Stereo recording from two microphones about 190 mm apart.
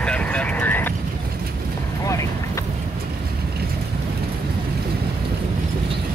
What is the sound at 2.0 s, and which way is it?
Vehicle, 15° left (ahead or behind).